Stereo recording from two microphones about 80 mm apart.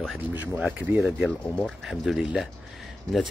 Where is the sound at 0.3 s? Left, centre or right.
Right.